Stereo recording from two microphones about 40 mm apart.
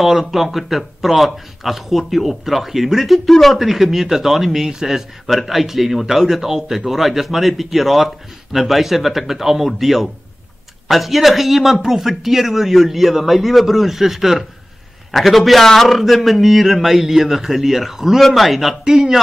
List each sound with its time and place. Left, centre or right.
0.0 s speech: centre
3.6 s a man's voice: centre
18.9 s a man's voice: centre